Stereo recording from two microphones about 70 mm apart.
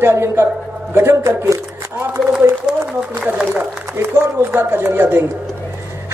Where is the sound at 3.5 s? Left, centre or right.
Right.